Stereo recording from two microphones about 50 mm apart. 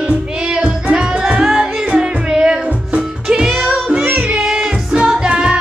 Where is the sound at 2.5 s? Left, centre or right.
Right.